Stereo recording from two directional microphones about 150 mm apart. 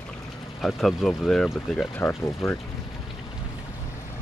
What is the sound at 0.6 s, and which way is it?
Speech, centre (ahead or behind).